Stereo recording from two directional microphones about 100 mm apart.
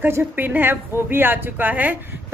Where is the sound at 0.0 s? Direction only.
20° right (ahead or behind).